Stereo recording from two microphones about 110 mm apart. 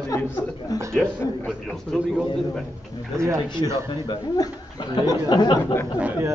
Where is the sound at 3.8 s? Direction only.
45° left (ahead or behind).